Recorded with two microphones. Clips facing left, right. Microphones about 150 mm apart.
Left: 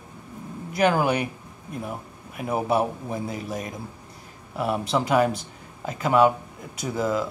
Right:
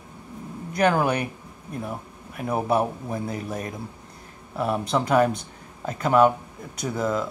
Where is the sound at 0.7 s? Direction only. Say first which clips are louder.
Even; 5° left (ahead or behind).